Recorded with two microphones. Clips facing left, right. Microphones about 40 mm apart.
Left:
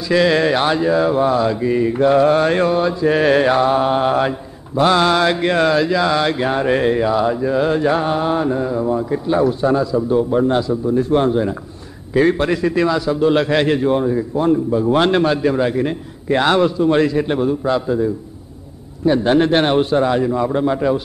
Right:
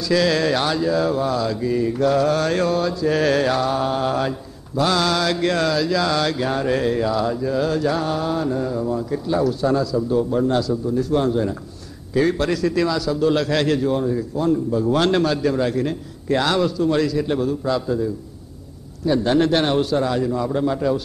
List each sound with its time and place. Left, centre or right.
0.1 s mantra: left